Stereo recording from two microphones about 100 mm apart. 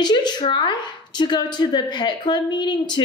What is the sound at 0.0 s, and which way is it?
A woman's voice, 45° left (ahead or behind).